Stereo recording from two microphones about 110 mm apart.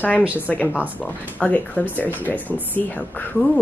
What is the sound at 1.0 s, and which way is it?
Speech, 15° left (ahead or behind).